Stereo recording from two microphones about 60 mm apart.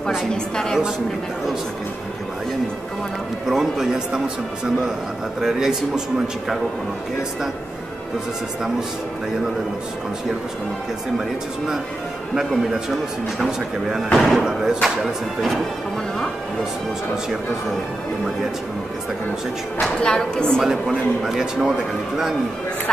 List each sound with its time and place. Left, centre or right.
0.3 s a woman's voice: centre
3.4 s a man's voice: centre
5.4 s a man's voice: centre
11.1 s a man's voice: centre
13.4 s a man's voice: centre
14.1 s speech: centre
14.4 s a man's voice: centre
20.0 s a woman's voice: centre
20.6 s a man's voice: centre